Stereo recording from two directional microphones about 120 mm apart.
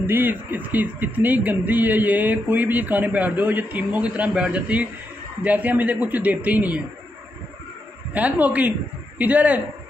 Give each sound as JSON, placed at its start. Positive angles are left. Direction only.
{"t": 0.0, "sound": "speech", "side_deg": -15}
{"t": 8.1, "sound": "speech", "side_deg": -15}